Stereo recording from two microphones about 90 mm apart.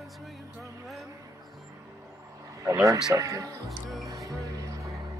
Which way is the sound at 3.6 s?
Centre (ahead or behind).